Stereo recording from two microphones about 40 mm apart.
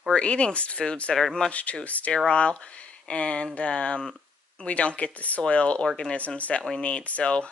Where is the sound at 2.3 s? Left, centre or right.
Left.